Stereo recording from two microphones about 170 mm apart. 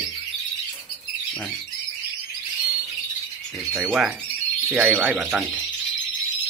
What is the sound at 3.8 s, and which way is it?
Speech, centre (ahead or behind).